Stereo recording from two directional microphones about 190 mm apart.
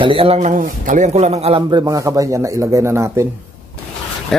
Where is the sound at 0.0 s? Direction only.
30° right (ahead or behind).